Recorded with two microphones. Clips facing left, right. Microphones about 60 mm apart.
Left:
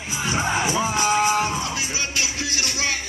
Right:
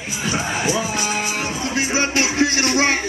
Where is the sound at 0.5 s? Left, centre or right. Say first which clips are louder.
Even; left.